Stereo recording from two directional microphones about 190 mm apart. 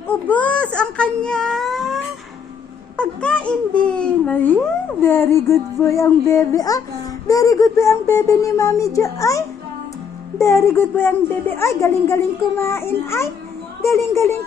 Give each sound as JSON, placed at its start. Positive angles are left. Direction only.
{"t": 0.3, "sound": "baby cry", "side_deg": 5}
{"t": 0.7, "sound": "wail", "side_deg": 5}
{"t": 3.0, "sound": "babbling", "side_deg": 5}
{"t": 7.2, "sound": "a woman's voice", "side_deg": 20}
{"t": 10.4, "sound": "a woman's voice", "side_deg": 15}